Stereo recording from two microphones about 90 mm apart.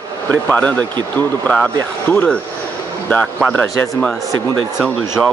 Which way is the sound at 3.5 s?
20° left (ahead or behind).